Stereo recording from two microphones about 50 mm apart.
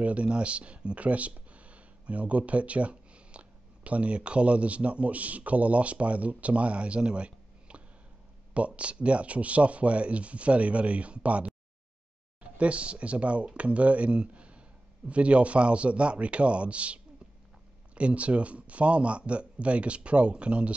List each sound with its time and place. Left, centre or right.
0.0 s speech: right
12.5 s speech: right